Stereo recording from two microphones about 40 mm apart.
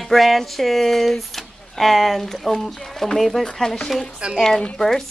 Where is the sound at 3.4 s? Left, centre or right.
Centre.